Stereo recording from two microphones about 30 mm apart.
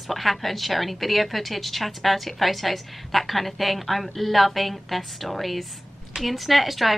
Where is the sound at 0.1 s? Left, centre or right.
Centre.